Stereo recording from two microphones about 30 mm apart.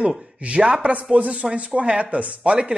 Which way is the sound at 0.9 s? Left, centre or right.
Right.